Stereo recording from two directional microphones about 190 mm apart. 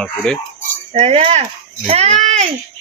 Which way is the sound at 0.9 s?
35° right (ahead or behind).